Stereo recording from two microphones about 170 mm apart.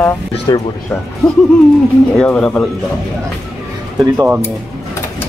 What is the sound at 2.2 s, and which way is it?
Speech, 5° left (ahead or behind).